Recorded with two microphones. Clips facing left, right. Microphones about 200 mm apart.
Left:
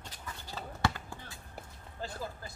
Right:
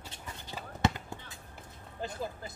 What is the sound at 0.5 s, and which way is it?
Basketball bounce, 20° right (ahead or behind).